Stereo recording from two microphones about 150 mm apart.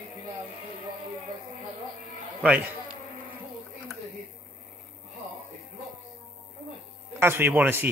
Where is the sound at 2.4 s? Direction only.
10° right (ahead or behind).